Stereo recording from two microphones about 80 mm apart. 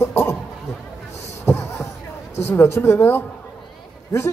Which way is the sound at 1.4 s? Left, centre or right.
Left.